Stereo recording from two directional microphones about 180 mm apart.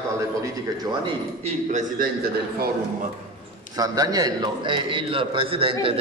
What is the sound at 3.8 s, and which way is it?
A man's voice, 20° right (ahead or behind).